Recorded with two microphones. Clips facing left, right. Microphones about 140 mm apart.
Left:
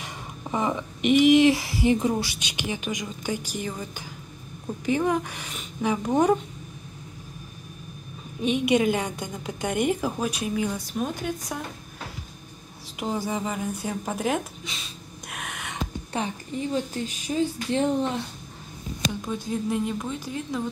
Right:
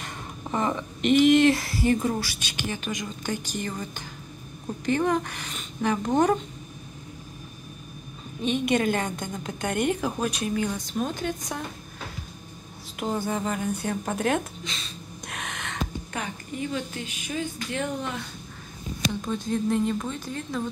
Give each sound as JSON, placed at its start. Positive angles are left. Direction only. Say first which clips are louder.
{"t": 0.0, "sound": "a woman's voice", "louder": "even", "side_deg": 10}
{"t": 8.4, "sound": "a woman's voice", "louder": "left 2 dB", "side_deg": 10}
{"t": 12.9, "sound": "speech", "louder": "even", "side_deg": 5}
{"t": 16.1, "sound": "speech", "louder": "left 4 dB", "side_deg": 30}
{"t": 19.2, "sound": "a woman's voice", "louder": "right 3 dB", "side_deg": 10}